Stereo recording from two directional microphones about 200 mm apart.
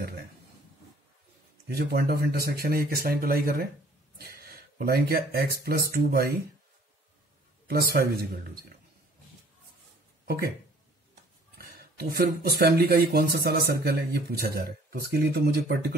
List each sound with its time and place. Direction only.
1.7 s speech: 50° right (ahead or behind)
7.6 s speech: 50° right (ahead or behind)
10.2 s speech: 50° right (ahead or behind)
11.5 s speech: 50° right (ahead or behind)